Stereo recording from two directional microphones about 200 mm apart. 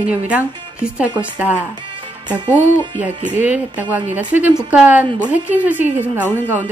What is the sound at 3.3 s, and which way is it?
A woman's voice, 10° right (ahead or behind).